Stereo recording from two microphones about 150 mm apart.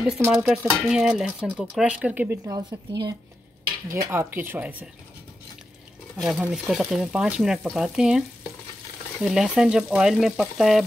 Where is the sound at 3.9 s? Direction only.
15° right (ahead or behind).